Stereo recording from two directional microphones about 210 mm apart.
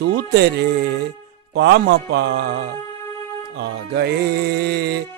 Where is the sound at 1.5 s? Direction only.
55° right (ahead or behind).